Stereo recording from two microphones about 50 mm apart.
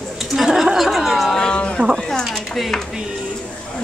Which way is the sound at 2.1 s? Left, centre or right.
Centre.